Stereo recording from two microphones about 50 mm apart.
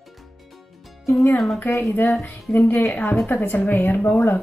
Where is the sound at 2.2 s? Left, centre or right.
Left.